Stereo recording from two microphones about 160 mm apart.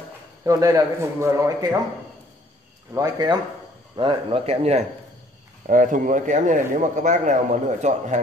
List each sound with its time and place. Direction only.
0.5 s speech: 20° right (ahead or behind)
2.9 s speech: 25° right (ahead or behind); by 4.8 s 40° right (ahead or behind)
5.7 s speech: 55° right (ahead or behind)